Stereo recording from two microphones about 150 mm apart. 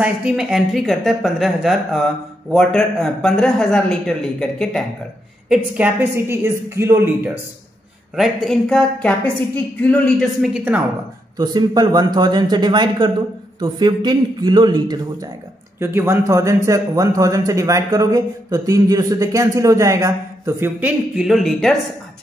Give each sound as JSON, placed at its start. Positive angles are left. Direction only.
{"t": 0.0, "sound": "speech", "side_deg": -5}
{"t": 5.5, "sound": "a woman's voice", "side_deg": -10}
{"t": 8.2, "sound": "a man's voice", "side_deg": 0}
{"t": 11.3, "sound": "a man's voice", "side_deg": -25}
{"t": 15.8, "sound": "a man's voice", "side_deg": -15}
{"t": 21.2, "sound": "speech", "side_deg": 0}